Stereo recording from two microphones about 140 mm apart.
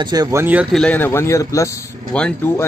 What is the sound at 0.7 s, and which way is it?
A man's voice, 10° left (ahead or behind).